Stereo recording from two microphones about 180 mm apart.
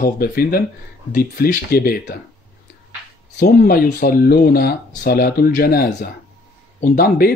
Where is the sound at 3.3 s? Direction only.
60° left (ahead or behind).